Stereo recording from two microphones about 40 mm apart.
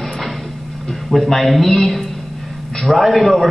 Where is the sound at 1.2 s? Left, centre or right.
Centre.